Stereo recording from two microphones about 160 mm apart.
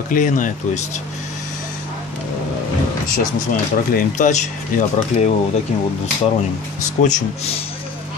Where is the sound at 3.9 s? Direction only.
65° left (ahead or behind).